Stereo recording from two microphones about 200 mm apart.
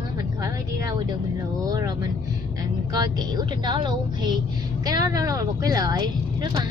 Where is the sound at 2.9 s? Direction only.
20° right (ahead or behind).